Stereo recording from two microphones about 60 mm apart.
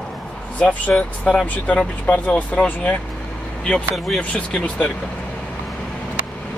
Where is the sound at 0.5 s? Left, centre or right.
Left.